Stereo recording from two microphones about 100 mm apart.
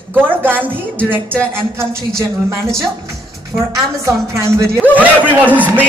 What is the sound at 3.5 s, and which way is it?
A woman's voice, 30° right (ahead or behind).